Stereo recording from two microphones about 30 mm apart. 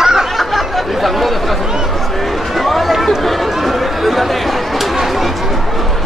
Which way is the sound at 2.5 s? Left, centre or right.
Centre.